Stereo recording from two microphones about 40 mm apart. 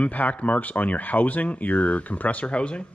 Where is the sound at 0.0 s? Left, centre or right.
Left.